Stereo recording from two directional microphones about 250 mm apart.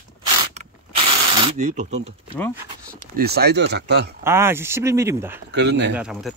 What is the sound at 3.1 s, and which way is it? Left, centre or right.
Speech, right.